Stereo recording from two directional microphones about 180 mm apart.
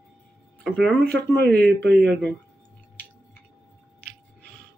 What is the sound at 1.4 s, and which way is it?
Speech, 65° right (ahead or behind).